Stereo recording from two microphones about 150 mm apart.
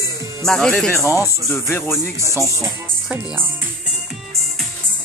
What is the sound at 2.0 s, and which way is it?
Speech, 20° right (ahead or behind).